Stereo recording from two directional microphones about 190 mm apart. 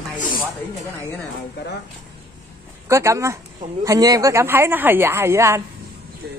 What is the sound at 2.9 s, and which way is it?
Speech, 15° right (ahead or behind).